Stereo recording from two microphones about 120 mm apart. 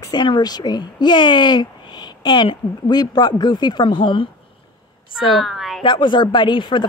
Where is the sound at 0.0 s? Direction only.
35° left (ahead or behind).